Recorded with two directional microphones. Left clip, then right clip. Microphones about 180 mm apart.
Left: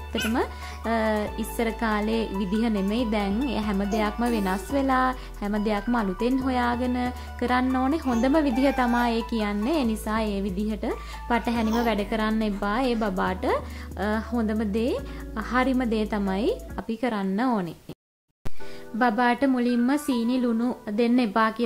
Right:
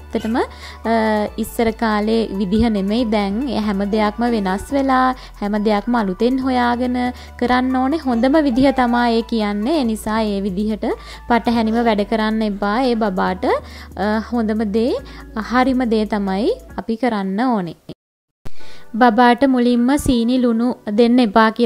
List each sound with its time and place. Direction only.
0.1 s speech: 35° right (ahead or behind)
18.9 s speech: 40° right (ahead or behind)